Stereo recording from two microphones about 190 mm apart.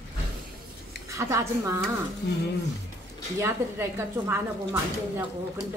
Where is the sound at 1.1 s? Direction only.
15° right (ahead or behind).